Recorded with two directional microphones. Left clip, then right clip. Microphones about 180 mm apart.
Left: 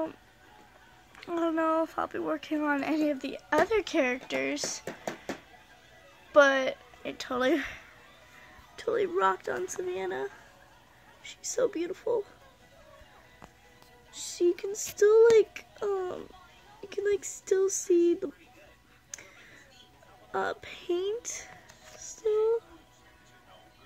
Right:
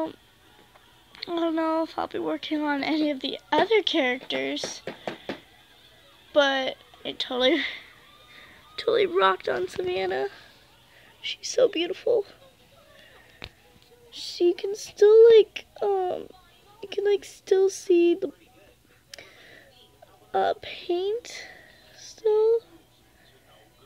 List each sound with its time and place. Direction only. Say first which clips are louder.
1.2 s speech: right 2 dB; 15° right (ahead or behind); by 4.8 s 5° left (ahead or behind)
4.8 s a sound: right 3 dB; 25° right (ahead or behind)
6.3 s speech: even; centre (ahead or behind)
8.8 s speech: right 6 dB; 20° right (ahead or behind)
11.4 s speech: right 7 dB; 5° left (ahead or behind)
11.7 s speech: right 6 dB; 15° right (ahead or behind)
14.1 s speech: right 4 dB; centre (ahead or behind)
19.0 s a sound: right 2 dB; centre (ahead or behind)
20.2 s speech: right 7 dB; centre (ahead or behind)